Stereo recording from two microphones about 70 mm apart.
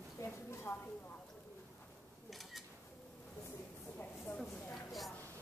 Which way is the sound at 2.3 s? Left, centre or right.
Centre.